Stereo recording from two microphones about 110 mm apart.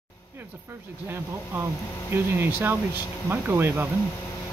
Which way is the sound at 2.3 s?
20° right (ahead or behind).